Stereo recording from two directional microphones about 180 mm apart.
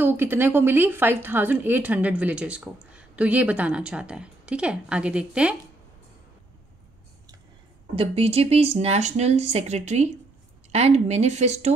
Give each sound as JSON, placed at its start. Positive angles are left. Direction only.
{"t": 0.0, "sound": "speech", "side_deg": -10}
{"t": 7.9, "sound": "speech", "side_deg": -35}